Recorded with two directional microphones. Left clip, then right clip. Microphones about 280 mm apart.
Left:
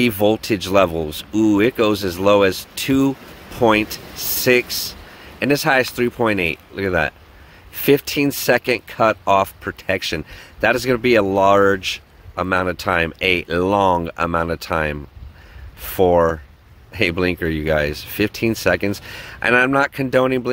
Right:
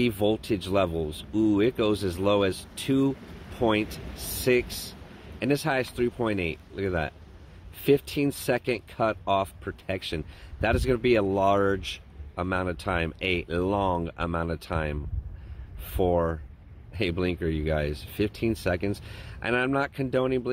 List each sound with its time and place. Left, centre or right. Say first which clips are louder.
0.0 s speech: left 9 dB; centre